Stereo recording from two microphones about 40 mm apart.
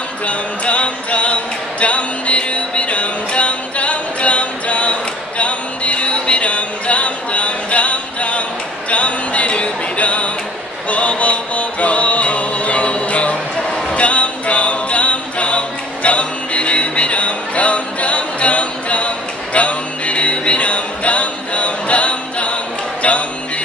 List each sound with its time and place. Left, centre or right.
0.3 s music: left
5.4 s a sound: left
8.9 s music: left
13.9 s a capella: left
23.0 s basketball bounce: left